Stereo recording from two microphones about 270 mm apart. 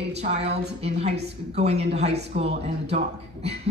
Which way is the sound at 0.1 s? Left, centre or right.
Right.